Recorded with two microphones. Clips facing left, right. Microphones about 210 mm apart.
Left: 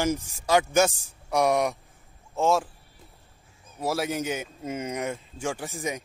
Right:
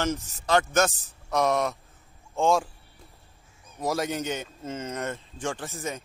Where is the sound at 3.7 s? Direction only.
5° left (ahead or behind).